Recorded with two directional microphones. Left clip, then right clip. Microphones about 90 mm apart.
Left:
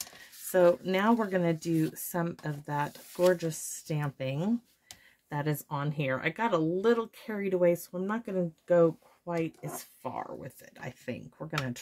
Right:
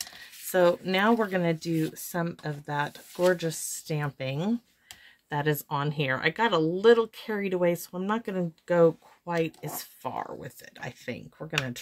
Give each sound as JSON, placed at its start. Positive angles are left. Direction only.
{"t": 0.5, "sound": "speech", "side_deg": -10}
{"t": 1.6, "sound": "speech", "side_deg": 10}
{"t": 5.3, "sound": "speech", "side_deg": -35}
{"t": 5.7, "sound": "speech", "side_deg": -45}
{"t": 8.4, "sound": "speech", "side_deg": -60}
{"t": 9.4, "sound": "speech", "side_deg": -40}
{"t": 11.1, "sound": "speech", "side_deg": 0}